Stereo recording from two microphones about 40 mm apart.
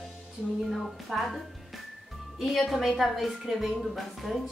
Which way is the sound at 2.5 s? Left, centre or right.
Centre.